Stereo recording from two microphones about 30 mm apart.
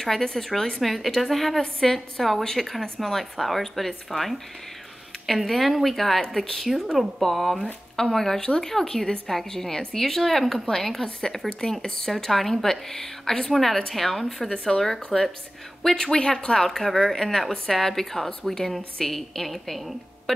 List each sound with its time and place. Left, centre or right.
0.0 s a woman's voice: centre
0.7 s a woman's voice: centre
8.4 s a woman's voice: left; by 11.1 s centre
11.6 s speech: left
12.3 s speech: centre
12.6 s a woman's voice: centre
14.5 s a woman's voice: left
16.2 s a woman's voice: left
16.6 s a woman's voice: centre
20.3 s music: centre